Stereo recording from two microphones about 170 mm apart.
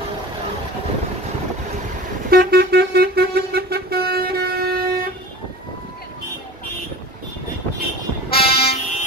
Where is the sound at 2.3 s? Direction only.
65° right (ahead or behind).